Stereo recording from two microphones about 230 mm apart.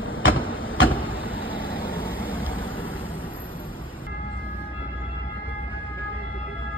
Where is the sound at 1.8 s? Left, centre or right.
Left.